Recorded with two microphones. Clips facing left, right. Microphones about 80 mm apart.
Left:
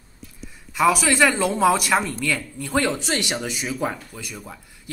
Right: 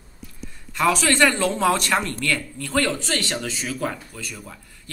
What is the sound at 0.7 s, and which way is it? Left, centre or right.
A man's voice, centre.